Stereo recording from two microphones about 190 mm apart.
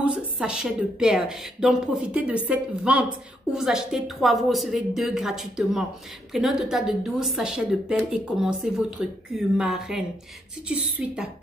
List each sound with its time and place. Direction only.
0.0 s a woman's voice: 5° right (ahead or behind)